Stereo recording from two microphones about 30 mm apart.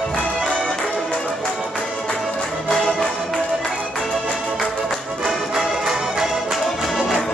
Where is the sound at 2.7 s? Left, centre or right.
Centre.